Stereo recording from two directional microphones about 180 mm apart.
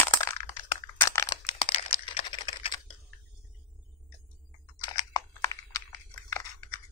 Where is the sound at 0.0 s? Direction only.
15° left (ahead or behind).